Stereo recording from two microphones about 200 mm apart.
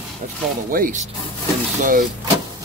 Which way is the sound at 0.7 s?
40° right (ahead or behind).